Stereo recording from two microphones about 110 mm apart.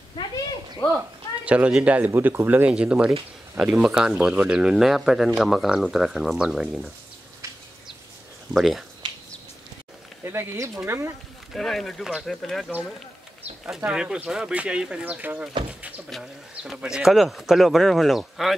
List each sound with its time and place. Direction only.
1.4 s speech: 10° right (ahead or behind)
8.5 s speech: centre (ahead or behind)
9.0 s dog: 45° right (ahead or behind)
10.2 s speech: 25° right (ahead or behind)
11.5 s speech: centre (ahead or behind)
13.7 s speech: 10° right (ahead or behind)
16.1 s speech: centre (ahead or behind)